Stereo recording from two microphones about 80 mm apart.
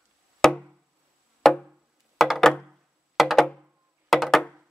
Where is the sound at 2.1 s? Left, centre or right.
Centre.